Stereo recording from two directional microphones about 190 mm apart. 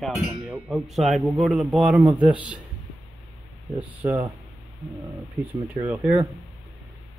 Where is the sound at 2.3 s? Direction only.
5° right (ahead or behind).